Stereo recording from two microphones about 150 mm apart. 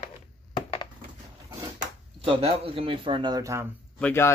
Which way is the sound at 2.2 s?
35° right (ahead or behind).